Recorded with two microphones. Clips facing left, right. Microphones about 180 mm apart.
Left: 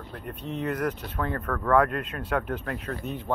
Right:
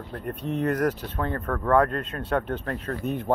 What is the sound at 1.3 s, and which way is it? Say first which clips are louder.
Speech: right 1 dB; 25° right (ahead or behind).